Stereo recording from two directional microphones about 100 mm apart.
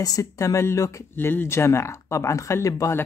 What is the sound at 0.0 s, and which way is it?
Speech, 35° left (ahead or behind).